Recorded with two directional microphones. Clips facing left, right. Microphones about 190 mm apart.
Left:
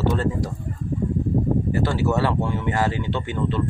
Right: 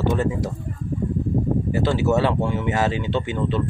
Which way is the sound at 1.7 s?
20° right (ahead or behind).